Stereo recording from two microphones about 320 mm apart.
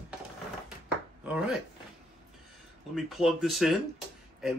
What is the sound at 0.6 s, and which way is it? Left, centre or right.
Chopping, centre.